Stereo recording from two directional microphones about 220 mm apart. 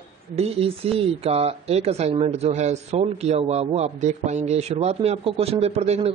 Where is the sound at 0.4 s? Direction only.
25° right (ahead or behind).